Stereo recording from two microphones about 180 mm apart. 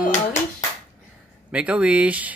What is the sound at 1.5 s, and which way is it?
Speech, 5° right (ahead or behind).